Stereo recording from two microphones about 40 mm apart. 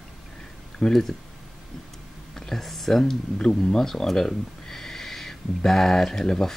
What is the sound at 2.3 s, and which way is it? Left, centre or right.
Speech, centre.